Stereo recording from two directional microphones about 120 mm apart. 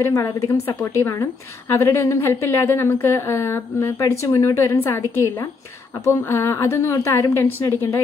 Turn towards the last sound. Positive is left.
turn(degrees=25)  # may be behind; listen again after turning